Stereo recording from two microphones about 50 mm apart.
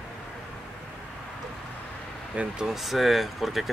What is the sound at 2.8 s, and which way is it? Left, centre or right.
Speech, centre.